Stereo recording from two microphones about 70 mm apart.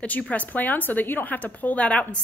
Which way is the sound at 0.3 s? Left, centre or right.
Left.